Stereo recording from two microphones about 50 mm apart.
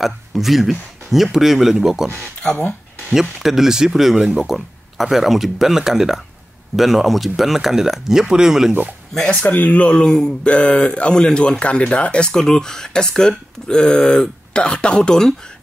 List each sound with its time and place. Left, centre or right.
0.0 s speech: centre
3.1 s speech: centre
9.4 s speech: left; by 15.5 s centre